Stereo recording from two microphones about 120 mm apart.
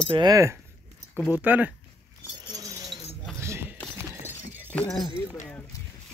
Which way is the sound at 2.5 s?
30° right (ahead or behind).